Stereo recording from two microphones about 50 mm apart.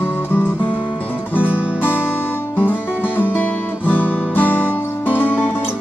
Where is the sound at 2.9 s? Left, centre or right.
Right.